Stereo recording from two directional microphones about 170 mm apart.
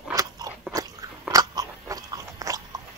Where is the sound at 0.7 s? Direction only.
20° right (ahead or behind).